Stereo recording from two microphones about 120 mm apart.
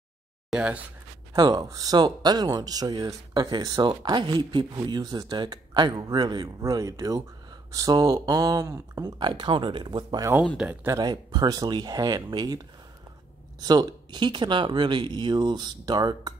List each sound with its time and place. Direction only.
0.5 s speech: 10° right (ahead or behind)
1.3 s speech: 35° right (ahead or behind)
10.6 s speech: 15° right (ahead or behind)
10.9 s speech: 35° right (ahead or behind)